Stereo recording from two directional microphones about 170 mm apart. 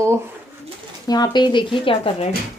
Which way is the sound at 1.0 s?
25° left (ahead or behind).